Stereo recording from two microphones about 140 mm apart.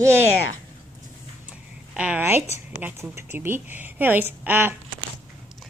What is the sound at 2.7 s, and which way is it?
A woman's voice, 15° right (ahead or behind).